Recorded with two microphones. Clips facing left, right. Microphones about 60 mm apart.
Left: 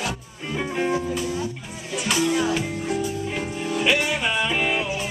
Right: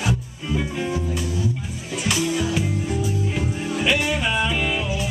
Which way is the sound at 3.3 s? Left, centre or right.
Centre.